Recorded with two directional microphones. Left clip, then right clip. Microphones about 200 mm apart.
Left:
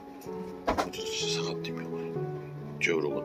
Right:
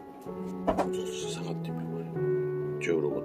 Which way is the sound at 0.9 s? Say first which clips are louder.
Left 1 dB; 10° right (ahead or behind).